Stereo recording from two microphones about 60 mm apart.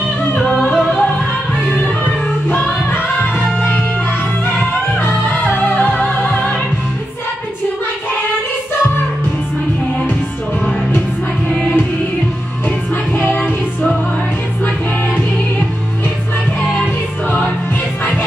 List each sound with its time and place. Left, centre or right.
0.4 s music: centre
5.8 s music: left